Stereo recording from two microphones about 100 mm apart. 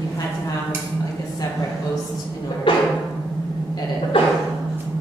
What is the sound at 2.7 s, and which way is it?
Music, 55° left (ahead or behind).